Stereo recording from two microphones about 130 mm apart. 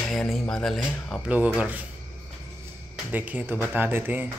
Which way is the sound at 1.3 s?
10° right (ahead or behind).